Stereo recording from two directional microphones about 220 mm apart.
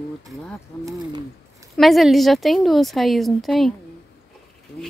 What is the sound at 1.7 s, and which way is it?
A woman's voice, centre (ahead or behind).